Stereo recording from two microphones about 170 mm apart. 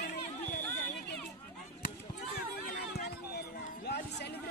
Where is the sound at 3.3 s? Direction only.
70° left (ahead or behind).